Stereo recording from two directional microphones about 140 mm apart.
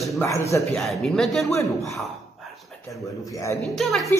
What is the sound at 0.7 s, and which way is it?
Speech, centre (ahead or behind).